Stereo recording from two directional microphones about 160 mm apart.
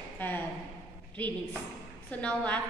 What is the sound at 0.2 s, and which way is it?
Speech, 10° left (ahead or behind).